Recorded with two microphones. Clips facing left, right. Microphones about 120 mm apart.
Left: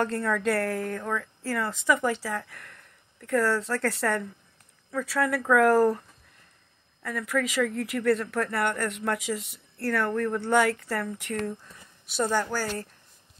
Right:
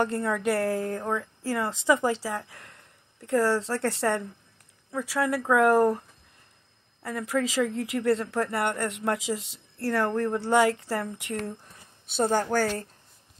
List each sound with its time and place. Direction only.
0.0 s speech: 20° right (ahead or behind)
12.2 s a woman's voice: 45° right (ahead or behind)